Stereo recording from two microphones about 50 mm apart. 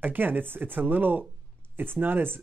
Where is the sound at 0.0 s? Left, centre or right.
Right.